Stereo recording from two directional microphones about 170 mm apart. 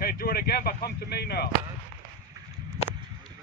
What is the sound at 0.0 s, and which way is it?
Speech, 60° left (ahead or behind).